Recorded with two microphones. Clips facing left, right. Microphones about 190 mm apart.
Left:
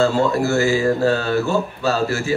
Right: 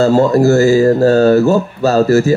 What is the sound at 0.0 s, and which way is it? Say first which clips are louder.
Speech: right 7 dB; 40° right (ahead or behind).